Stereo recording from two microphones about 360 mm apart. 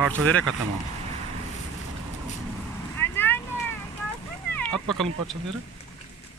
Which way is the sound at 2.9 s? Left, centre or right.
Centre.